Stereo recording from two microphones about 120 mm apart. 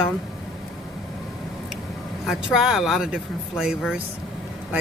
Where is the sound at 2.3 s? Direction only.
5° right (ahead or behind).